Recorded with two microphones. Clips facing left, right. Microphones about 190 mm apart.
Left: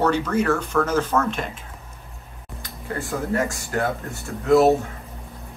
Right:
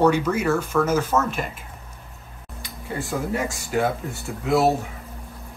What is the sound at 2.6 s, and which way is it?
Speech, 15° right (ahead or behind).